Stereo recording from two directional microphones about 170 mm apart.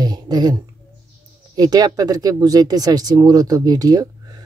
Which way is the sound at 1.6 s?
20° right (ahead or behind).